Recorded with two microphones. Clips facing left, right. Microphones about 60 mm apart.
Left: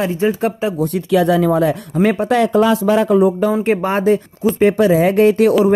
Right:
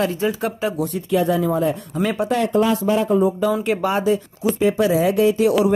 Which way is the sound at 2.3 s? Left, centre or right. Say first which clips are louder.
Left 3 dB; left.